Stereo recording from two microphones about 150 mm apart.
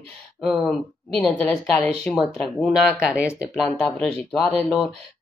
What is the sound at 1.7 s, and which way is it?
Speech, 5° left (ahead or behind).